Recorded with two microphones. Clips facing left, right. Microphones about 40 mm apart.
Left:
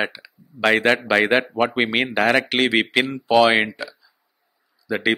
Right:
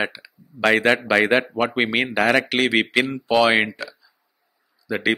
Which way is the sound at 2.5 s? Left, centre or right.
Left.